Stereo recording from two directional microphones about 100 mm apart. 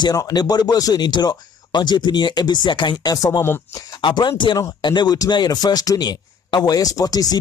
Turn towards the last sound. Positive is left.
turn(degrees=40)  # may be behind; listen again after turning